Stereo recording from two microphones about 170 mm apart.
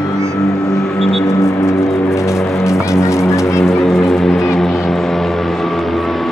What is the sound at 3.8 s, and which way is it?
Vehicle, centre (ahead or behind).